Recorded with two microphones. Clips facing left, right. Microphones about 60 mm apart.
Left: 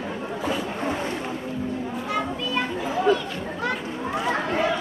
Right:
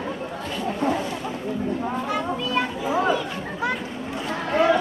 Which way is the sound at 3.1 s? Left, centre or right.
Centre.